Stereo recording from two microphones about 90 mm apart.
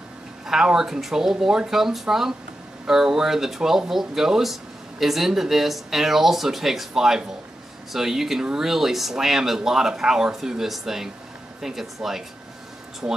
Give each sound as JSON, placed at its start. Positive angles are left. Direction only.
{"t": 0.5, "sound": "speech", "side_deg": -5}
{"t": 13.0, "sound": "speech", "side_deg": -15}